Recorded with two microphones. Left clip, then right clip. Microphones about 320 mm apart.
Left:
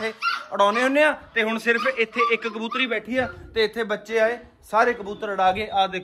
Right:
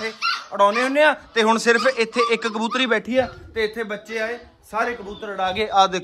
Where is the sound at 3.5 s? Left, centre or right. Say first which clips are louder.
Left 2 dB; centre.